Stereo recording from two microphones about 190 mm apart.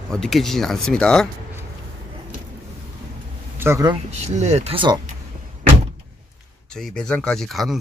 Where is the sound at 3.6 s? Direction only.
15° right (ahead or behind).